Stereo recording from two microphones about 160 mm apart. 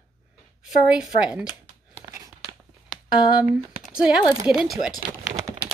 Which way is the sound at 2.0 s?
20° right (ahead or behind).